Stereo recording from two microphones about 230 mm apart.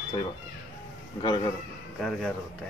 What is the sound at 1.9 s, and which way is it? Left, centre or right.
Speech, centre.